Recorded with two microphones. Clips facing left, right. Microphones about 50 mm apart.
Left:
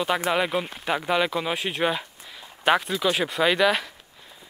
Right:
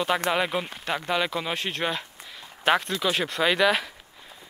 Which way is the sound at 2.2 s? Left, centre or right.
Centre.